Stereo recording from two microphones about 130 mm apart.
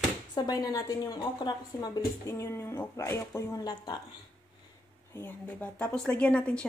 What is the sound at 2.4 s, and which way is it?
Speech, 20° left (ahead or behind).